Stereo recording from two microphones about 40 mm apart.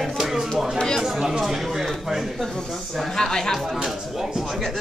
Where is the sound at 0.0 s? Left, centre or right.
Centre.